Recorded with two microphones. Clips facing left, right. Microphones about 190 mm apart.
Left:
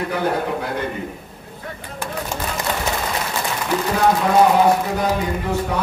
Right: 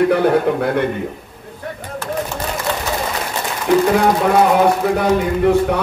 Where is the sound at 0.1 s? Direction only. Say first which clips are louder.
Right 7 dB; 65° right (ahead or behind).